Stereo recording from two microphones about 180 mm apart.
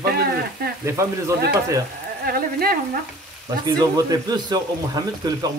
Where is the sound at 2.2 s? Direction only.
55° right (ahead or behind).